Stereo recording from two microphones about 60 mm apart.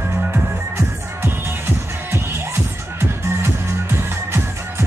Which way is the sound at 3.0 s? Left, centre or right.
Right.